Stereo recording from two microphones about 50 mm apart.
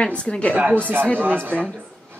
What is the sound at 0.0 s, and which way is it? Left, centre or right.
Speech, left.